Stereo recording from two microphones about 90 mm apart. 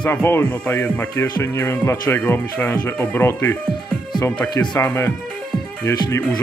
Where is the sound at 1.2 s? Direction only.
30° left (ahead or behind).